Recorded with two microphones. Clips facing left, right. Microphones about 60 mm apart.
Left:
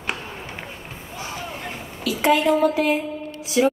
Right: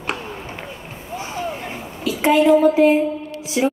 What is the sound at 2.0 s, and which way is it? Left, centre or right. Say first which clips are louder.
Speech: right 3 dB; right.